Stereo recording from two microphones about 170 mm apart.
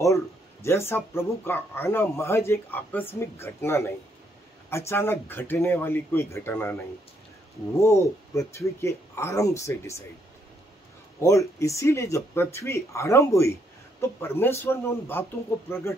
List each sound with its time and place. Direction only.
0.0 s speech: 15° left (ahead or behind)
7.8 s speech: 15° left (ahead or behind)
11.2 s speech: 15° left (ahead or behind)